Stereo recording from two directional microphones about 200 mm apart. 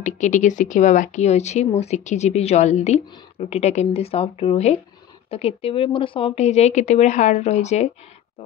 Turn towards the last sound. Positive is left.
turn(degrees=35)  # may be behind; listen again after turning